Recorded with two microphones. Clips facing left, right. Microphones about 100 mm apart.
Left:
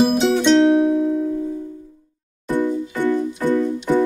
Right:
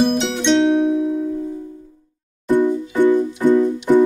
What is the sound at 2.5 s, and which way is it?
Music, 15° right (ahead or behind).